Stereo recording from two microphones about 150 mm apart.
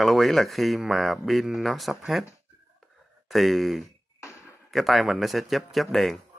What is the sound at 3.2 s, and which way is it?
Speech, centre (ahead or behind).